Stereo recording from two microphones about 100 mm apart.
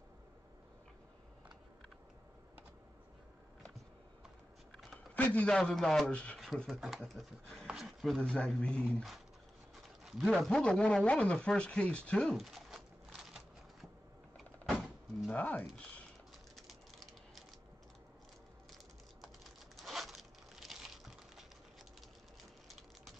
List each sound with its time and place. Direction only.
4.9 s a sound: 15° left (ahead or behind)
5.6 s speech: 5° left (ahead or behind)
6.8 s speech: 5° right (ahead or behind)
7.6 s a sound: 5° right (ahead or behind)
8.2 s speech: 10° left (ahead or behind)
10.0 s a man's voice: centre (ahead or behind)
14.7 s vehicle: centre (ahead or behind)
15.3 s speech: 15° left (ahead or behind)
19.8 s a sound: centre (ahead or behind)